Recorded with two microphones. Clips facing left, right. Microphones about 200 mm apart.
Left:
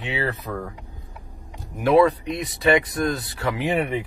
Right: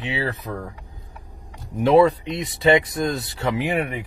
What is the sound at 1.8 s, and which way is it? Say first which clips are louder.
Speech: right 1 dB; 25° right (ahead or behind).